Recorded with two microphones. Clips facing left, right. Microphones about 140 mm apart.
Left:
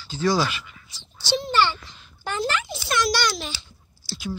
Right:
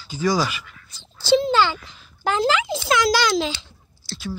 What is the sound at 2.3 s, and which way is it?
A child's voice, 90° right.